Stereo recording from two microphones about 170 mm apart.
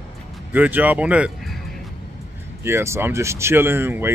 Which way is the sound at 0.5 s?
10° right (ahead or behind).